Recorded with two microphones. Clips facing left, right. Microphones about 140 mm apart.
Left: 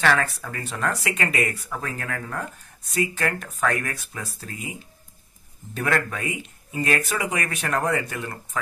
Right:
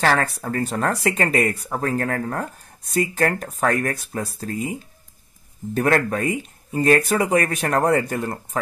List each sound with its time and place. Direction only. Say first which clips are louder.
0.0 s speech: right 2 dB; 40° right (ahead or behind)
5.8 s speech: right 6 dB; 40° right (ahead or behind)